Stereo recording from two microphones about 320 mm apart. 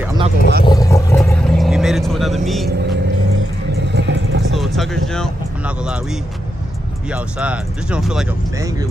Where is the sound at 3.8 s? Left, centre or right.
Right.